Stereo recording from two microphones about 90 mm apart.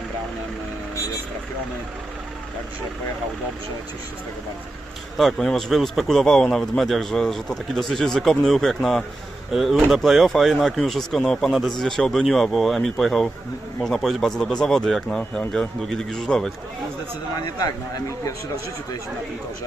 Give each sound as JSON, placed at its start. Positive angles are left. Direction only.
{"t": 5.1, "sound": "a man's voice", "side_deg": 0}
{"t": 17.3, "sound": "speech", "side_deg": 45}